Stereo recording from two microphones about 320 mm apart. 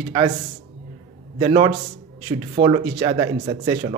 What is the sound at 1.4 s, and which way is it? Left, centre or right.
Speech, centre.